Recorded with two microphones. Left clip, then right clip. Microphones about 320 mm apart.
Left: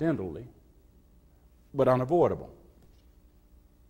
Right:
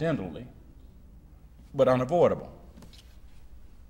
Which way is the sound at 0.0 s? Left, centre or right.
Left.